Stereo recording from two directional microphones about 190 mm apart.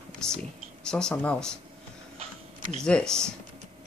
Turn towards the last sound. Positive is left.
turn(degrees=5)  # may be behind; listen again after turning